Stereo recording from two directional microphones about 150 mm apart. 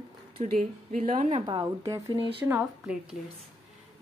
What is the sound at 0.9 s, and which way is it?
Speech, 45° right (ahead or behind).